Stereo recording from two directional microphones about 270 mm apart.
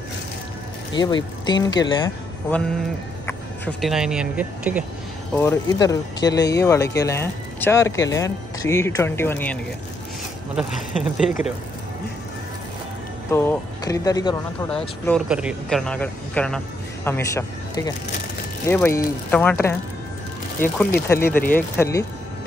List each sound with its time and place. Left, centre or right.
0.9 s speech: centre
3.3 s speech: centre
5.3 s speech: centre
13.3 s speech: centre
14.7 s speech: centre